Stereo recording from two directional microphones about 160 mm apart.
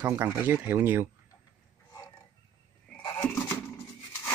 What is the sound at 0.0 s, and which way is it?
Speech, 15° right (ahead or behind).